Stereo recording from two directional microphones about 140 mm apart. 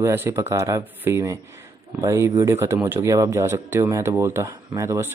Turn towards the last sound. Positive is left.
turn(degrees=-20)  # may be behind; listen again after turning